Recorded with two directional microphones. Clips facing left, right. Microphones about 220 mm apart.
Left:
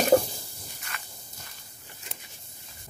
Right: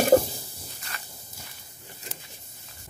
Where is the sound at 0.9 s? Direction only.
35° right (ahead or behind).